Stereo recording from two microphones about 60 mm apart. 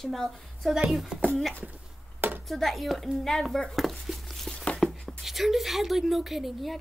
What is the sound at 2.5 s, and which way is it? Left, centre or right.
Speech, centre.